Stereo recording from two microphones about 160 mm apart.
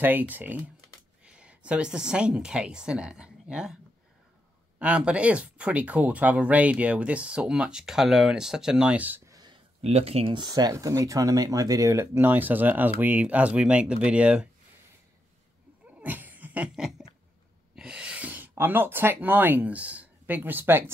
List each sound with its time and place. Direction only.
0.0 s speech: 10° right (ahead or behind)
4.7 s speech: 5° right (ahead or behind); by 9.6 s 25° right (ahead or behind)
9.8 s speech: 40° right (ahead or behind); by 14.5 s 5° right (ahead or behind)
16.0 s a sound: 10° right (ahead or behind)
17.7 s speech: 5° right (ahead or behind)